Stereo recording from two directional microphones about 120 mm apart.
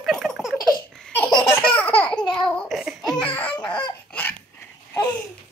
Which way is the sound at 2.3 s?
5° left (ahead or behind).